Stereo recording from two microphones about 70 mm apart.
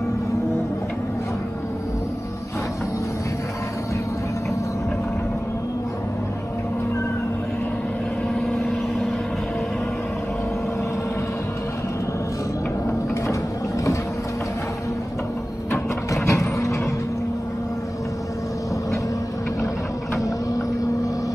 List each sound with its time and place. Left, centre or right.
8.4 s vehicle: centre
16.1 s vehicle: left